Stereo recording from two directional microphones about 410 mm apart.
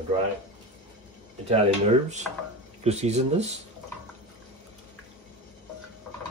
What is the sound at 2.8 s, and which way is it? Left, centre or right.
Speech, centre.